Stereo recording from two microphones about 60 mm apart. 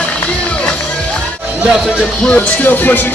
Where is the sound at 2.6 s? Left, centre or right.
Left.